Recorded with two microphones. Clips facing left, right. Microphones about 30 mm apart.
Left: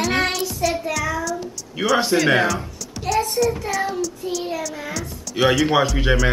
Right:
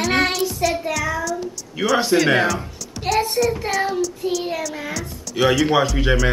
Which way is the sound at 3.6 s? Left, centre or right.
Centre.